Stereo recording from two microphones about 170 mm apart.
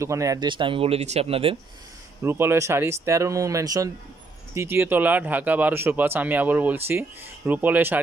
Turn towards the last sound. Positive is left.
turn(degrees=-10)  # may be behind; listen again after turning